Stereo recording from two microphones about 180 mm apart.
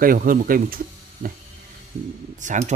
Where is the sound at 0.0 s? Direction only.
50° right (ahead or behind).